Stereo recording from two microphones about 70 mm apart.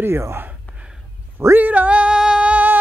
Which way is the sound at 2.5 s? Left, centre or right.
Right.